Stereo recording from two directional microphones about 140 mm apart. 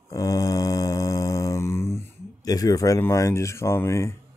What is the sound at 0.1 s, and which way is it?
Mantra, 25° left (ahead or behind).